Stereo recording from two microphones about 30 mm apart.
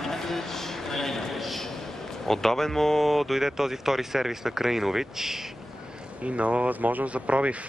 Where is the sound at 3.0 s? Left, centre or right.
Centre.